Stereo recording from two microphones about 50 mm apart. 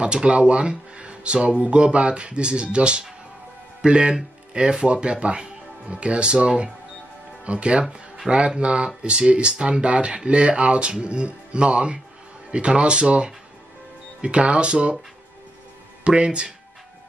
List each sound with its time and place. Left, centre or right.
0.0 s speech: right
16.0 s speech: right